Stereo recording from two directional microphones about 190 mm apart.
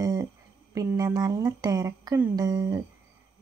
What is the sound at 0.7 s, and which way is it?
A woman's voice, 20° right (ahead or behind).